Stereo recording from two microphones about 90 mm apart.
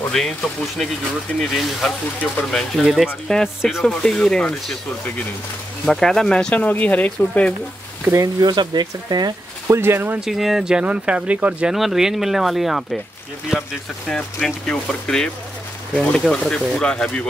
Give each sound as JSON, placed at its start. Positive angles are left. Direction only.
{"t": 0.1, "sound": "speech", "side_deg": 5}
{"t": 8.0, "sound": "speech", "side_deg": -30}
{"t": 8.4, "sound": "speech", "side_deg": -50}
{"t": 9.7, "sound": "speech", "side_deg": -25}
{"t": 10.2, "sound": "speech", "side_deg": -5}
{"t": 14.0, "sound": "speech", "side_deg": 5}